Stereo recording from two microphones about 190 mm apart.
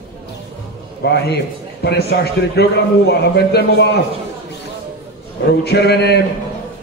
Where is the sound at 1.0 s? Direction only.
60° left (ahead or behind).